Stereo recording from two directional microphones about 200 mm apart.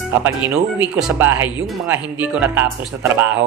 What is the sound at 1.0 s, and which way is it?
Speech, 5° right (ahead or behind).